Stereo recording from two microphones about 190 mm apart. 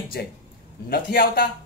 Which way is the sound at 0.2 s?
55° left (ahead or behind).